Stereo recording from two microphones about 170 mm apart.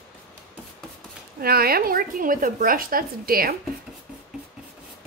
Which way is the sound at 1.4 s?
65° right (ahead or behind).